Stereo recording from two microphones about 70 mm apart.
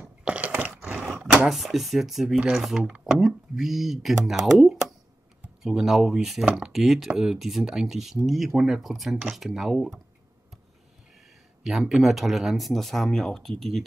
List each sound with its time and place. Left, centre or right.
0.2 s a sound: centre
1.5 s speech: centre
11.6 s speech: centre